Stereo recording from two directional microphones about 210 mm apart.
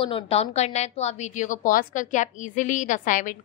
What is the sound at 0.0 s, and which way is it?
A woman's voice, 25° left (ahead or behind).